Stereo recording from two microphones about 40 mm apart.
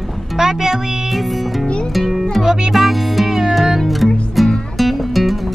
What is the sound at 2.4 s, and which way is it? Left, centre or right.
Speech, centre.